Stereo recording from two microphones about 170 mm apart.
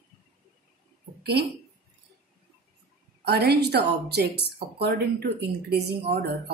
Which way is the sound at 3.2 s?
70° right (ahead or behind).